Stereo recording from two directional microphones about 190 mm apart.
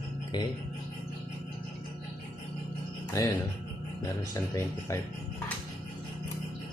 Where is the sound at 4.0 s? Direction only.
15° left (ahead or behind).